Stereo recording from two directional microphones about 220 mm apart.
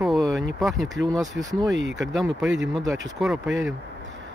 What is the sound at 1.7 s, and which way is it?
Speech, 55° right (ahead or behind).